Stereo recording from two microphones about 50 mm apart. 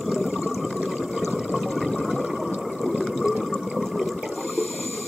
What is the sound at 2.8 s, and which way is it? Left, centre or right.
Water, centre.